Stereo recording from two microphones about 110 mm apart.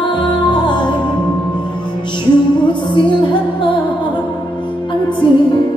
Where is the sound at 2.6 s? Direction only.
45° left (ahead or behind).